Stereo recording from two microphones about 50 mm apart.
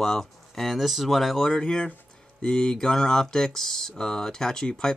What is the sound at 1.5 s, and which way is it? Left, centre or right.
Speech, centre.